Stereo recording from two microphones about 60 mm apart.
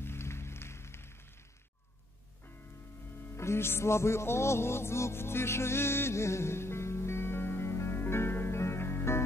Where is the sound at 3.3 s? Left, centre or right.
Left.